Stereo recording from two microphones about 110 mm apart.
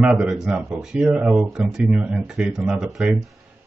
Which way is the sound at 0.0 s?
10° right (ahead or behind).